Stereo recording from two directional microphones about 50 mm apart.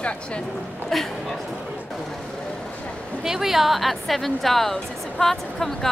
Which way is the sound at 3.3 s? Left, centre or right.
Centre.